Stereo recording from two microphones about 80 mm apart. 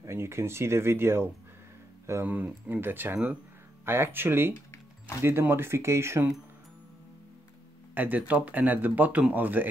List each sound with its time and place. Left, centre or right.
0.0 s speech: right
7.9 s speech: right